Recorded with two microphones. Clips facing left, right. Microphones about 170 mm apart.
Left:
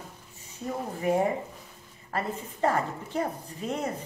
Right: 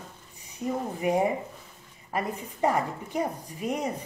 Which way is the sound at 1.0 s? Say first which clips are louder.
Even; 15° right (ahead or behind).